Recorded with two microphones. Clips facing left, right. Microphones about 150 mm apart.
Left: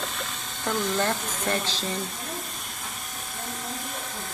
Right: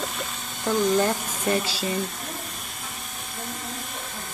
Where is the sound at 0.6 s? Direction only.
10° right (ahead or behind).